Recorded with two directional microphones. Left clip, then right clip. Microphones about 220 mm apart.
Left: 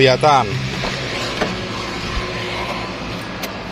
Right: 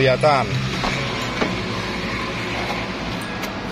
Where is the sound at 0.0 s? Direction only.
25° left (ahead or behind).